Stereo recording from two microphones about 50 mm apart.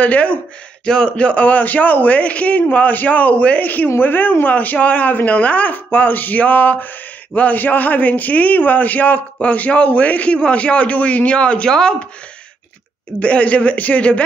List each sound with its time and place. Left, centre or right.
0.0 s a man's voice: left
13.2 s a man's voice: left